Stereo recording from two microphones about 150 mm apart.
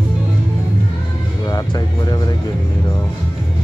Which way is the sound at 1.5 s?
25° left (ahead or behind).